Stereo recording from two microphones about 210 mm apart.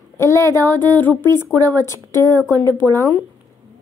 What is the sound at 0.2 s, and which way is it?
Female singing, 15° left (ahead or behind).